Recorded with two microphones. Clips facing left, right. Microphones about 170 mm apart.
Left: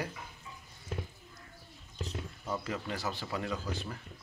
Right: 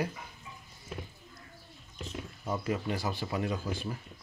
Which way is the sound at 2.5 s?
15° right (ahead or behind).